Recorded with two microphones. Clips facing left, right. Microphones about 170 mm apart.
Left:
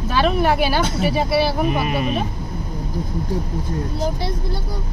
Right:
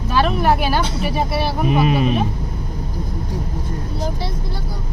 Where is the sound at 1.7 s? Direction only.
20° right (ahead or behind).